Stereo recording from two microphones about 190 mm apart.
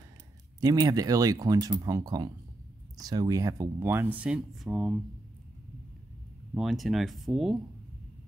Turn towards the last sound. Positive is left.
turn(degrees=0)  # may be behind; listen again after turning